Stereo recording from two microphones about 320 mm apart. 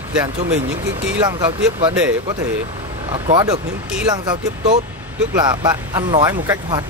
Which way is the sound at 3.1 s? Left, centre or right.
Centre.